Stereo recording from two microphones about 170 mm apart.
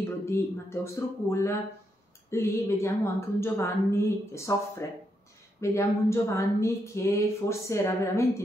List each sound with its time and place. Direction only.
0.2 s speech: 15° left (ahead or behind)